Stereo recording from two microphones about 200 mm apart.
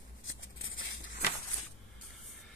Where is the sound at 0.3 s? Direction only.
80° left.